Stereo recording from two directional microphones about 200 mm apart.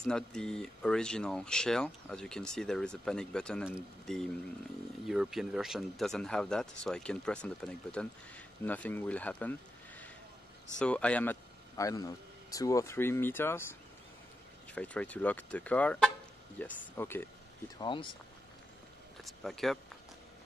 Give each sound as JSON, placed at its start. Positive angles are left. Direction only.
{"t": 0.0, "sound": "speech", "side_deg": 5}
{"t": 14.7, "sound": "speech", "side_deg": 5}
{"t": 17.7, "sound": "speech", "side_deg": 25}
{"t": 19.2, "sound": "speech", "side_deg": 0}